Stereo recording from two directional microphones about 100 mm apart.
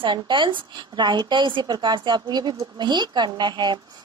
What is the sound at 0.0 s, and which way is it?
A woman's voice, 50° right (ahead or behind).